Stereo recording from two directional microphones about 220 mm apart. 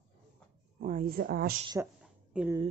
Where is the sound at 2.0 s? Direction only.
5° right (ahead or behind).